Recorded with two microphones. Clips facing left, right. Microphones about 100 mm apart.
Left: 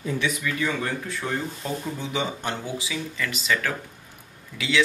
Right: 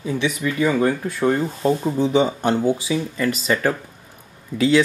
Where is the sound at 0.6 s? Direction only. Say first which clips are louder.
Right 11 dB; 45° right (ahead or behind).